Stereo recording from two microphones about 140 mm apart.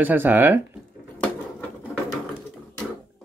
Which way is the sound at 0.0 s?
15° right (ahead or behind).